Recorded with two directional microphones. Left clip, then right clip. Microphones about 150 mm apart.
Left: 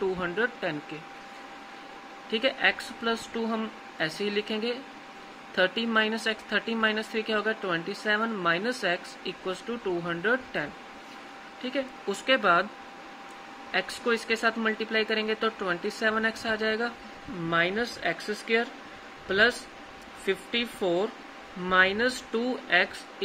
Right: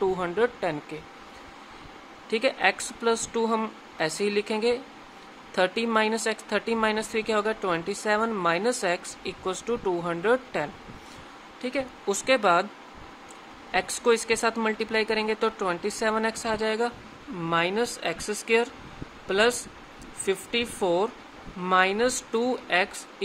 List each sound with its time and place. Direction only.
0.2 s speech: 35° right (ahead or behind)
2.3 s speech: 40° right (ahead or behind)
13.7 s speech: 40° right (ahead or behind)